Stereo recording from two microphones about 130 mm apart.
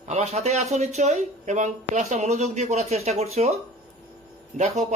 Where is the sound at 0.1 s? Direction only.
60° right (ahead or behind).